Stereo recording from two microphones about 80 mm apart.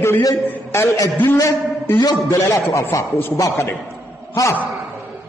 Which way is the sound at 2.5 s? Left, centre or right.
Left.